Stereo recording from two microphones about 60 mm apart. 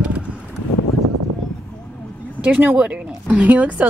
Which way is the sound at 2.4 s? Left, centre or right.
Right.